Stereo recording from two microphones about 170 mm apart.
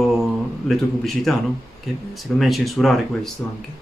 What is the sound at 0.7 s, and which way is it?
Speech, centre (ahead or behind).